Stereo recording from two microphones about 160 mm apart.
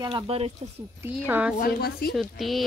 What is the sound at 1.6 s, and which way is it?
Speech, 70° left (ahead or behind).